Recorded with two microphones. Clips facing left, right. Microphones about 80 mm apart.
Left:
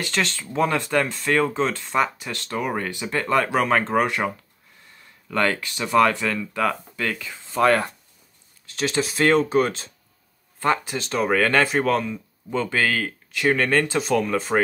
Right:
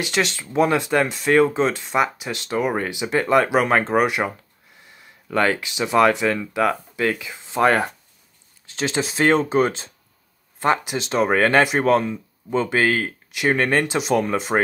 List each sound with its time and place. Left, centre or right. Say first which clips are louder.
0.0 s speech: right 3 dB; centre
5.3 s speech: right 3 dB; centre